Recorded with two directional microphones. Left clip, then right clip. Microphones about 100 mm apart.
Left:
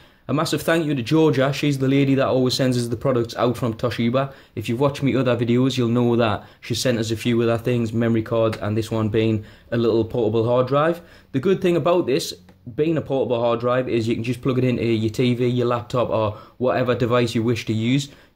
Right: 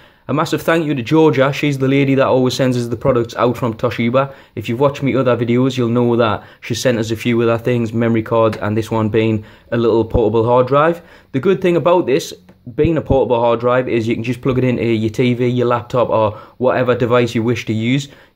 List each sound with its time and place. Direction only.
0.3 s speech: 15° right (ahead or behind)
6.6 s speech: 20° right (ahead or behind)